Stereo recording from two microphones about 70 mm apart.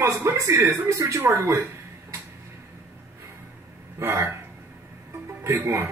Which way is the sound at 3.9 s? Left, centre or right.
Right.